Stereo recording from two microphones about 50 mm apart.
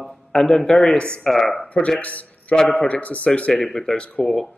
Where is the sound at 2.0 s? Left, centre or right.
Left.